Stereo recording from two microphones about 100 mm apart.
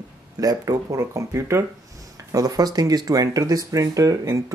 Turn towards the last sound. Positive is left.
turn(degrees=-35)  # may be behind; listen again after turning